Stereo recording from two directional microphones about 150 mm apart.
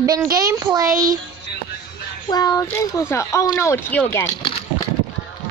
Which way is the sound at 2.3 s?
25° left (ahead or behind).